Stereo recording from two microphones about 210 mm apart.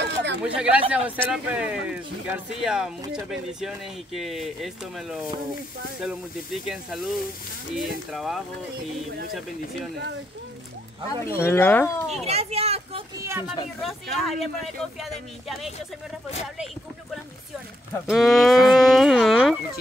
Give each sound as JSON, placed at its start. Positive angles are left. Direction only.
{"t": 0.0, "sound": "a sound", "side_deg": -55}
{"t": 0.6, "sound": "speech", "side_deg": -5}
{"t": 11.1, "sound": "speech", "side_deg": 15}
{"t": 12.3, "sound": "speech", "side_deg": -30}
{"t": 13.2, "sound": "speech", "side_deg": -10}
{"t": 13.7, "sound": "speech", "side_deg": 0}
{"t": 18.0, "sound": "speech", "side_deg": 0}